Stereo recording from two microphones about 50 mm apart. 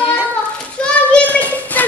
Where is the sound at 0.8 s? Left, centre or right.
Centre.